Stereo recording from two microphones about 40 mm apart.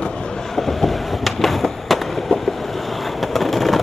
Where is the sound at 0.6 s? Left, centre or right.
Centre.